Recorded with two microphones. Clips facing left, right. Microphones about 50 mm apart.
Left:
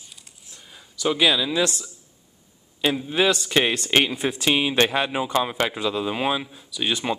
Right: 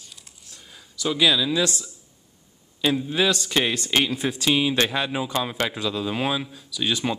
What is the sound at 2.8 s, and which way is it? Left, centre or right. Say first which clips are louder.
Speech: left 1 dB; centre.